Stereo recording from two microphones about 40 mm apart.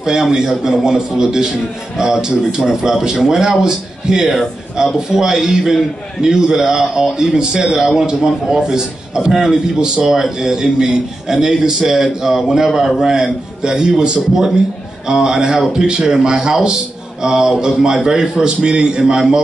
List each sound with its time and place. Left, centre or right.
0.0 s speech: centre